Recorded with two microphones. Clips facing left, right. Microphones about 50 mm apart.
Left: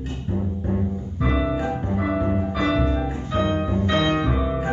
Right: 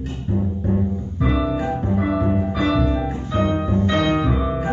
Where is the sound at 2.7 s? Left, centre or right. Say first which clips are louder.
Right 3 dB; centre.